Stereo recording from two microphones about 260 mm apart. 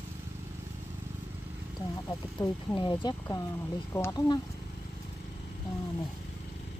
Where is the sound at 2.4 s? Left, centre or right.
Centre.